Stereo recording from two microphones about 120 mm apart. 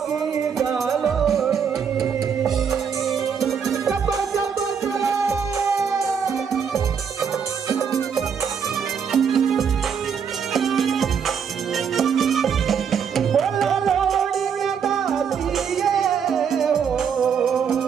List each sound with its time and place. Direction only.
0.6 s music: centre (ahead or behind)
4.4 s music: 25° right (ahead or behind)
9.1 s music: centre (ahead or behind)